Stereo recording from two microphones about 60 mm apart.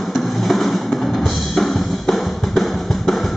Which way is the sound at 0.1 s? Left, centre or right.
Centre.